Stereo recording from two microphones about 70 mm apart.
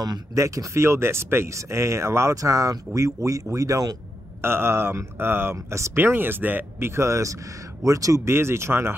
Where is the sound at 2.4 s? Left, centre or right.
Right.